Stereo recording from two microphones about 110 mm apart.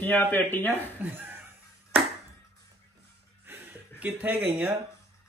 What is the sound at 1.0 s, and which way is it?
Speech, 20° right (ahead or behind).